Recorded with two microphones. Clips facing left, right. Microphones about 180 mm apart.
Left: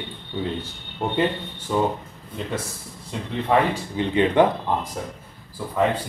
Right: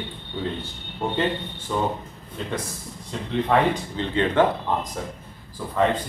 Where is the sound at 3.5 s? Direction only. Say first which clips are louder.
Left 1 dB; 15° left (ahead or behind).